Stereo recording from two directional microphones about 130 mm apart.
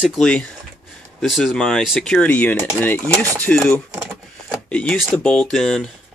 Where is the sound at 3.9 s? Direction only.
15° right (ahead or behind).